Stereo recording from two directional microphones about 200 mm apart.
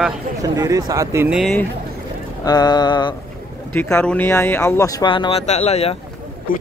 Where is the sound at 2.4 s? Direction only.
20° left (ahead or behind).